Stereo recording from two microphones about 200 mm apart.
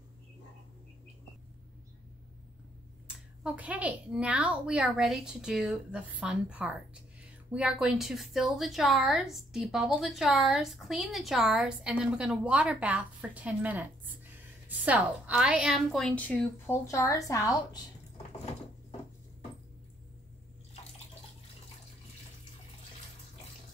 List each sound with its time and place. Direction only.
3.4 s a woman's voice: 5° right (ahead or behind); by 17.6 s 15° left (ahead or behind)
18.1 s door: 30° left (ahead or behind)